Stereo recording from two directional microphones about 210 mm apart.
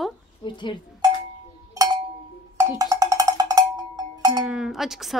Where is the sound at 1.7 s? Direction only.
20° right (ahead or behind).